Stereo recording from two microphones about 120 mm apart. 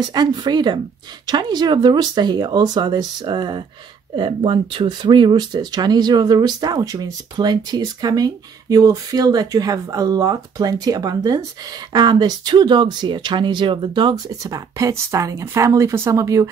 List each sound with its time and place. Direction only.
0.1 s speech: 40° right (ahead or behind)
14.4 s speech: 30° right (ahead or behind)